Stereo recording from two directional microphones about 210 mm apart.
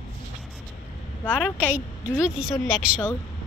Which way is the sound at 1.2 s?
5° left (ahead or behind).